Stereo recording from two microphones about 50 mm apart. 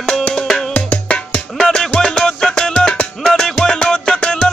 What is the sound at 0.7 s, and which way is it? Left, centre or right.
Music, left.